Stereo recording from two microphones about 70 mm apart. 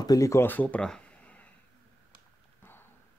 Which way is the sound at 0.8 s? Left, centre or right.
Centre.